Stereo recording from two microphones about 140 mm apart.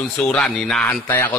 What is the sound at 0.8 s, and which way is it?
Speech, 15° left (ahead or behind).